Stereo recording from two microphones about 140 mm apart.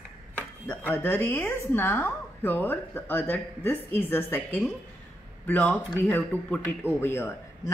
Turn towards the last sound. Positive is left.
turn(degrees=15)  # may be behind; listen again after turning